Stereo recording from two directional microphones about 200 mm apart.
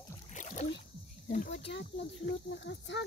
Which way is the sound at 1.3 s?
40° left (ahead or behind).